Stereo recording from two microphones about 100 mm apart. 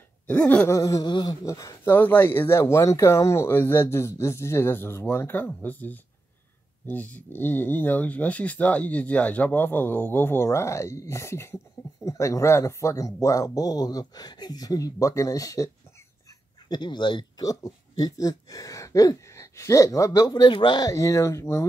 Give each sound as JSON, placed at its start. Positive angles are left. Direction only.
{"t": 0.3, "sound": "a sound", "side_deg": 15}
{"t": 0.7, "sound": "speech", "side_deg": 35}
{"t": 1.0, "sound": "speech", "side_deg": 50}
{"t": 1.4, "sound": "speech", "side_deg": 35}
{"t": 1.9, "sound": "speech", "side_deg": 20}
{"t": 16.6, "sound": "speech", "side_deg": 45}
{"t": 20.8, "sound": "speech", "side_deg": 35}